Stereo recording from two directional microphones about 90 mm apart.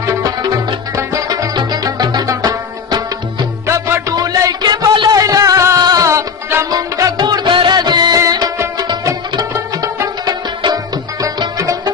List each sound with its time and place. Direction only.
0.0 s music: 40° right (ahead or behind)
3.6 s music: 35° right (ahead or behind)
10.2 s music: 45° right (ahead or behind)